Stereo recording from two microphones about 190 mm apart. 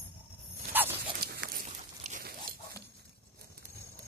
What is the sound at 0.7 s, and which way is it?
Dog, 10° right (ahead or behind).